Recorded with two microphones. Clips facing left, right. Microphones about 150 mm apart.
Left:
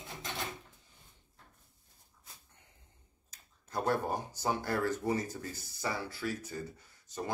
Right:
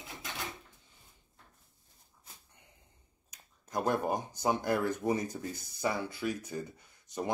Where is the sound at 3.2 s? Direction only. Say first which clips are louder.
Right 3 dB; 15° right (ahead or behind).